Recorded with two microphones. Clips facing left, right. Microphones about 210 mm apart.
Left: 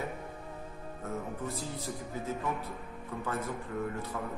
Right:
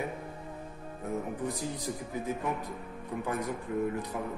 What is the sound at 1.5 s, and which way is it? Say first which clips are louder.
Speech: right 3 dB; 15° right (ahead or behind).